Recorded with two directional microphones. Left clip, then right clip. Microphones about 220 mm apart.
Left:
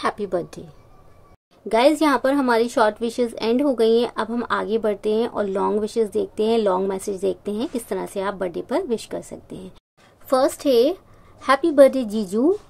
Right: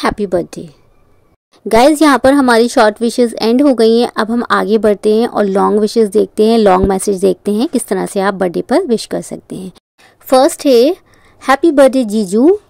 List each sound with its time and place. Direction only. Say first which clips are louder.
0.0 s a woman's voice: right 9 dB; 35° right (ahead or behind)
1.7 s a woman's voice: right 9 dB; 40° right (ahead or behind)